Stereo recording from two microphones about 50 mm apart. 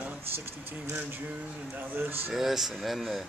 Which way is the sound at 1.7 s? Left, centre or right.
Right.